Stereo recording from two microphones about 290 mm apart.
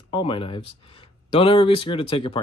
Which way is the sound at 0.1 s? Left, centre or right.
Centre.